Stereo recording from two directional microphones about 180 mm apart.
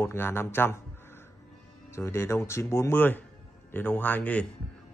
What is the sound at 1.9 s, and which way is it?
Speech, 15° left (ahead or behind).